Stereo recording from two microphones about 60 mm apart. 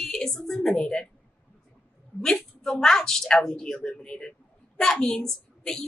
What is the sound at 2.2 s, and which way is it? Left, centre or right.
A woman's voice, centre.